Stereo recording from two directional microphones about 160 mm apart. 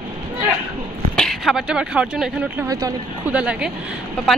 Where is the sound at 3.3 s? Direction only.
5° right (ahead or behind).